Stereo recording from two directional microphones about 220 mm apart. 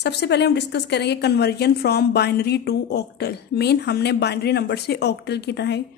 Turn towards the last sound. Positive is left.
turn(degrees=50)  # may be behind; listen again after turning